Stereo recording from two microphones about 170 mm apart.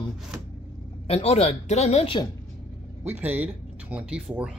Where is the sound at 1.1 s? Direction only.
35° left (ahead or behind).